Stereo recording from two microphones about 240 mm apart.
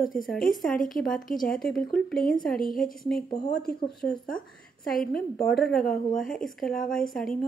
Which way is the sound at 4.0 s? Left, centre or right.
Centre.